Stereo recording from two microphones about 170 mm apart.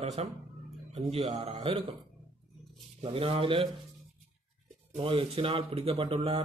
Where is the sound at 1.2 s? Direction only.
40° right (ahead or behind).